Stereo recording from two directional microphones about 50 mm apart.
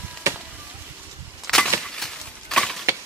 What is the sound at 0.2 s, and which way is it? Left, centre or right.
Chop, right.